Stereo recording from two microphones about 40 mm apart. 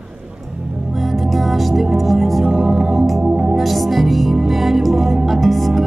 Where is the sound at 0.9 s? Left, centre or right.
Centre.